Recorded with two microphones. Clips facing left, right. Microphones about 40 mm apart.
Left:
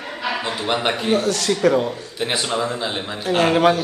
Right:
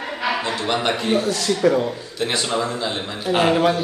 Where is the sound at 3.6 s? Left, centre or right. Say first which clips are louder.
Left 2 dB; left.